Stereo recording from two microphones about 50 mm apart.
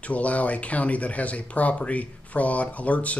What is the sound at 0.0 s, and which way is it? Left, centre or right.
Speech, left.